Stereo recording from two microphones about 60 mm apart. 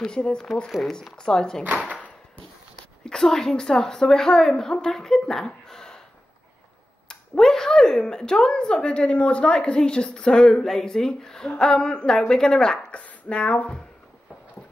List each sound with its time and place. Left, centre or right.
0.0 s a woman's voice: centre
0.7 s speech: centre
1.1 s a woman's voice: centre
1.6 s speech: right
3.1 s a woman's voice: centre
7.1 s a woman's voice: centre
12.9 s speech: left